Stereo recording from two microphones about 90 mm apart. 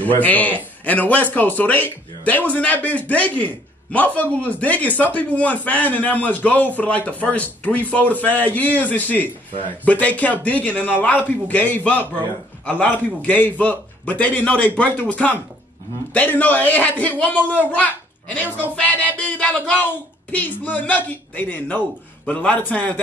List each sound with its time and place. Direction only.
0.0 s a child's voice: 20° left (ahead or behind)